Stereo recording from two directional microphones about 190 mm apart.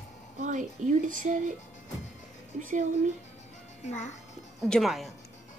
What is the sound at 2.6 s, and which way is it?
Speech, 45° right (ahead or behind).